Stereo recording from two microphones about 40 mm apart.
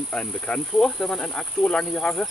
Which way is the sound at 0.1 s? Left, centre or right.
Left.